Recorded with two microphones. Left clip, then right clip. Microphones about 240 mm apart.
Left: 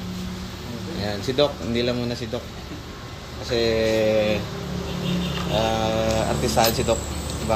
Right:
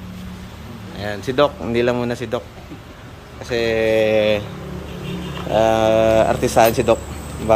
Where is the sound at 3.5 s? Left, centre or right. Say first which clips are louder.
Right 3 dB; centre.